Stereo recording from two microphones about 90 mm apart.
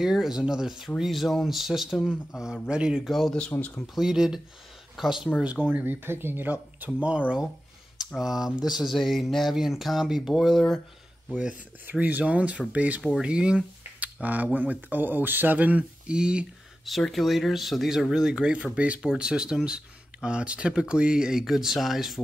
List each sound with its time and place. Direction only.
0.0 s speech: 5° right (ahead or behind)
3.5 s speech: 20° left (ahead or behind)
3.8 s speech: 5° right (ahead or behind)
11.3 s speech: 15° right (ahead or behind)
16.8 s speech: centre (ahead or behind)